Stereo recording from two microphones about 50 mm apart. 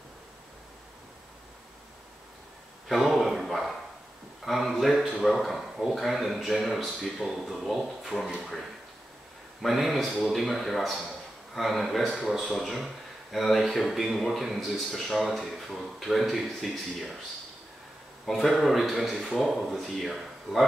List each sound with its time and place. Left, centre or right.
2.9 s a sound: centre
4.5 s speech: centre
9.6 s speech: centre
18.2 s speech: centre